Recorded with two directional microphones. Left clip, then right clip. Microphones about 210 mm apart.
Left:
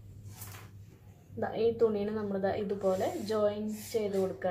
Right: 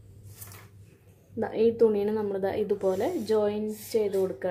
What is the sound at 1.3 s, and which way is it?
Speech, 50° right (ahead or behind).